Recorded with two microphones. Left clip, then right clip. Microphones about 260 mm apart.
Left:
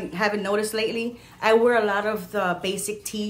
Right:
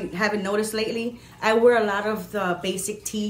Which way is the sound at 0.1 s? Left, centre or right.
Centre.